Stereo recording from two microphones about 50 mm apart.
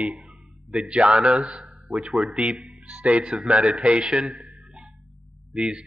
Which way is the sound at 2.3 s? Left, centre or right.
Right.